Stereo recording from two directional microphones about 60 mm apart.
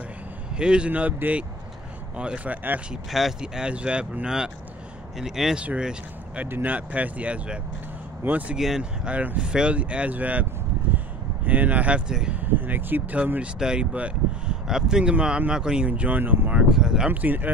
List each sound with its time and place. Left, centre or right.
0.6 s speech: centre
3.1 s speech: centre
3.3 s speech: centre
6.4 s speech: right
8.5 s speech: centre
9.0 s speech: right
11.4 s speech: right
12.4 s speech: right
13.4 s speech: centre
15.8 s speech: right
16.7 s speech: centre
17.1 s speech: right